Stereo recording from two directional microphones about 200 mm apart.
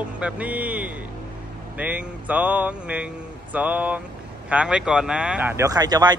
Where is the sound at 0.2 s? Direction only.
5° right (ahead or behind).